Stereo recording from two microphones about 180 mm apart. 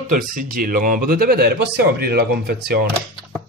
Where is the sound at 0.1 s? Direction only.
50° right (ahead or behind).